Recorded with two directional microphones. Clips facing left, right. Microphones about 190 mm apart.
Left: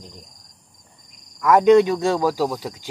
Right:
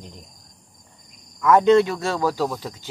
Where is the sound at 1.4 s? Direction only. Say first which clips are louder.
Left 2 dB; 10° left (ahead or behind).